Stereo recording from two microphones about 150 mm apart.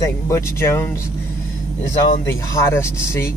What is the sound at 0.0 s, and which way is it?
Speech, 20° left (ahead or behind).